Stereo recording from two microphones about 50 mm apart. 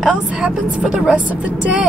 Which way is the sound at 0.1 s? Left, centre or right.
Right.